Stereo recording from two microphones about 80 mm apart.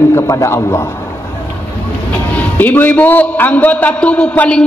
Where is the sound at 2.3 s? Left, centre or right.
Left.